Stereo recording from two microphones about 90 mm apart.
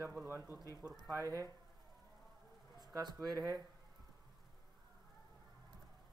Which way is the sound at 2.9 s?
50° right (ahead or behind).